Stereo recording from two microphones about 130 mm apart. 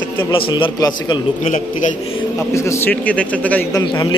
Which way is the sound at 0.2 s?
40° left (ahead or behind).